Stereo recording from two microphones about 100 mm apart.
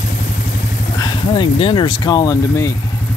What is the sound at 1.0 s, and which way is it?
Speech, 55° left (ahead or behind).